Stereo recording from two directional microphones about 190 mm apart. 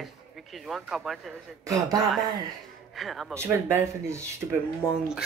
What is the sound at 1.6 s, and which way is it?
Speech, 20° right (ahead or behind).